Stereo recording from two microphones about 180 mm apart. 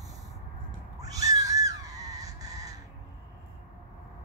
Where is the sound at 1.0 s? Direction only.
20° right (ahead or behind).